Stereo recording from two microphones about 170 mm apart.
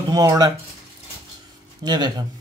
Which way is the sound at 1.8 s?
25° right (ahead or behind).